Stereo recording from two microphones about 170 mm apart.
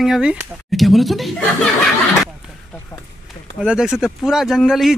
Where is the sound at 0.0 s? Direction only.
5° right (ahead or behind).